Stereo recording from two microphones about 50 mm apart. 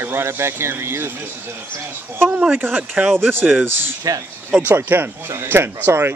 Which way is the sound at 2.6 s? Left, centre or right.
Right.